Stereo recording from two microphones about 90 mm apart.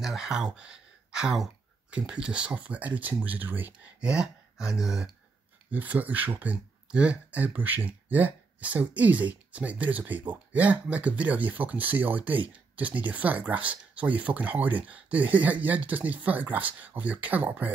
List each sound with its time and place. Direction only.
0.0 s speech: 5° right (ahead or behind); by 3.7 s 20° right (ahead or behind)
4.0 s speech: 10° right (ahead or behind)
5.7 s speech: 20° right (ahead or behind)